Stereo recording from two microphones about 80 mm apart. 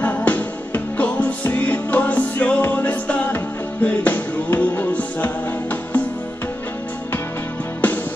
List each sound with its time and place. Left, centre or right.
0.0 s music: centre